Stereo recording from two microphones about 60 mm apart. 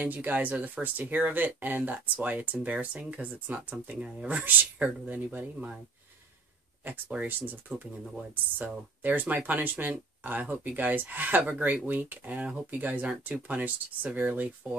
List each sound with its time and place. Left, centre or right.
0.0 s speech: right
6.8 s speech: right
8.5 s speech: right